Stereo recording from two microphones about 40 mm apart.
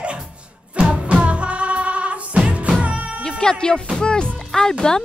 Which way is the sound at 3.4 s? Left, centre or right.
Centre.